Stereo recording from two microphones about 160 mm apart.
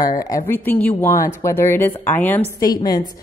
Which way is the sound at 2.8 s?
25° left (ahead or behind).